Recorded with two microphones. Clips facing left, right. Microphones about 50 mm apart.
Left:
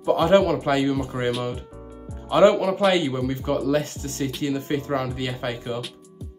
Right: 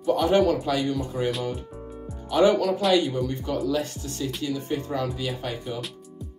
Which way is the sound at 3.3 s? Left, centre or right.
Left.